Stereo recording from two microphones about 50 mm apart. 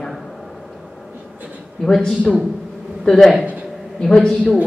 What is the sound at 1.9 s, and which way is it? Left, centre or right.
Speech, centre.